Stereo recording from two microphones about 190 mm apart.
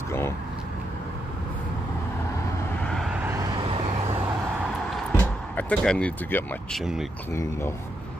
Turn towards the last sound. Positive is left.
turn(degrees=15)  # may be behind; listen again after turning